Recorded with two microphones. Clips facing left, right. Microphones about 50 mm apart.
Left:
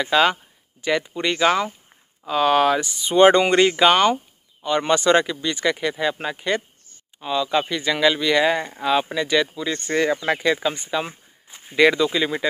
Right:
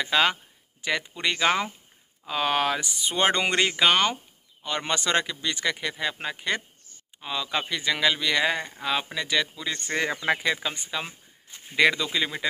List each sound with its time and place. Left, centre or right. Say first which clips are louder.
0.0 s speech: left 5 dB; centre